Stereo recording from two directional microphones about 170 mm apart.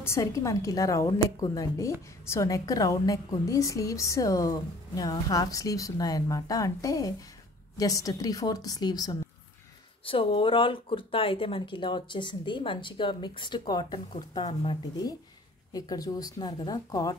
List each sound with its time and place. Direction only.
0.0 s speech: 15° left (ahead or behind)